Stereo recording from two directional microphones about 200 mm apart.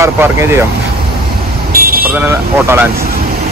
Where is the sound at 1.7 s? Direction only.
45° right (ahead or behind).